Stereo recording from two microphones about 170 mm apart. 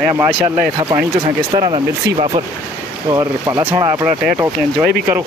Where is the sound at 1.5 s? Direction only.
30° right (ahead or behind).